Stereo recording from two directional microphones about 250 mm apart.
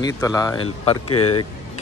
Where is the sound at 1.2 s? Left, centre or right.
Left.